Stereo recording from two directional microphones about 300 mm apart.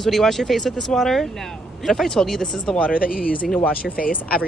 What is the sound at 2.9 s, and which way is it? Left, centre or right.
Speech, left.